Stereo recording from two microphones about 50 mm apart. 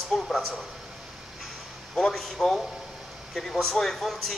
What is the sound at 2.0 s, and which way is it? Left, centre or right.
A man's voice, centre.